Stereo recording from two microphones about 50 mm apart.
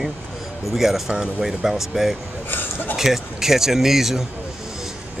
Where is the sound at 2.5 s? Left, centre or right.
Left.